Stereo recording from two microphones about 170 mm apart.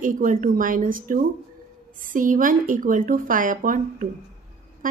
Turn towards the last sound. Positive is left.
turn(degrees=-55)  # may be behind; listen again after turning